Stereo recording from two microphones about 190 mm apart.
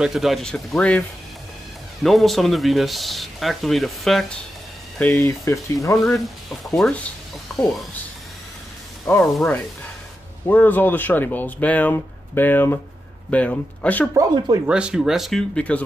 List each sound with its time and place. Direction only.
0.0 s speech: centre (ahead or behind)
2.0 s speech: centre (ahead or behind)
6.1 s speech: centre (ahead or behind)
9.2 s speech: centre (ahead or behind)
14.1 s speech: 25° right (ahead or behind)
14.7 s speech: 5° right (ahead or behind)